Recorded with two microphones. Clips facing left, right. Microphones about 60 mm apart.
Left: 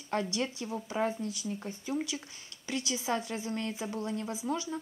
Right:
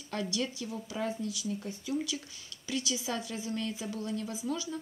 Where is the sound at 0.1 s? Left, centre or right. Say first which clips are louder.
Left 2 dB; left.